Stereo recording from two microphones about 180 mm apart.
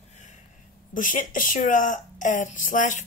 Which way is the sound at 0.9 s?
50° left (ahead or behind).